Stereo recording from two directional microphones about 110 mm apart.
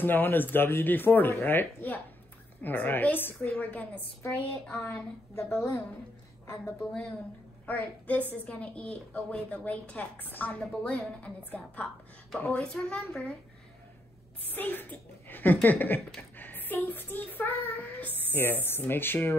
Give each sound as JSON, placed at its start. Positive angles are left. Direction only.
{"t": 0.0, "sound": "a woman's voice", "side_deg": 20}
{"t": 6.4, "sound": "a woman's voice", "side_deg": 25}
{"t": 6.8, "sound": "a woman's voice", "side_deg": 10}
{"t": 14.5, "sound": "a child's voice", "side_deg": 15}